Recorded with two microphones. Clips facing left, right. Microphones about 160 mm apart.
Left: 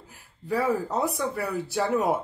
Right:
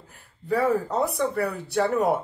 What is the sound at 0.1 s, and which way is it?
A woman's voice, centre (ahead or behind).